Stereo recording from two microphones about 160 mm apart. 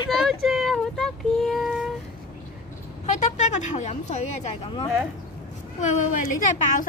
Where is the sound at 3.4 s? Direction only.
50° left (ahead or behind).